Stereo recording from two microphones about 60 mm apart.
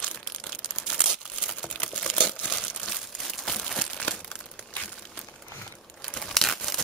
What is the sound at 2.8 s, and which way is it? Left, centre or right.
Crumpling, centre.